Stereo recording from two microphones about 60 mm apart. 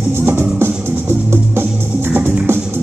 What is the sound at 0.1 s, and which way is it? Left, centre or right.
Music, right.